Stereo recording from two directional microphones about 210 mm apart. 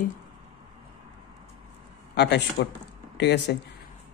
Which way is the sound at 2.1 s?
55° left (ahead or behind).